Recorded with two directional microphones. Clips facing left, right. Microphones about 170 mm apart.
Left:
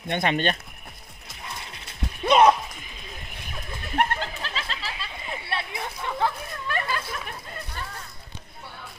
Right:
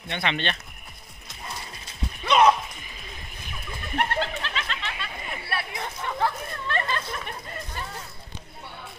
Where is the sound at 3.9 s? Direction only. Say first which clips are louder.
Left 1 dB; 35° left (ahead or behind).